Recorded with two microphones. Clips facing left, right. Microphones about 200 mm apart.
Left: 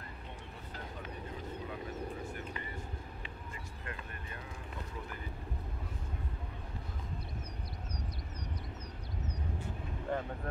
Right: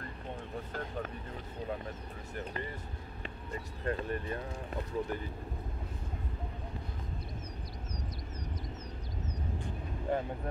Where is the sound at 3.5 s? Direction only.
40° right (ahead or behind).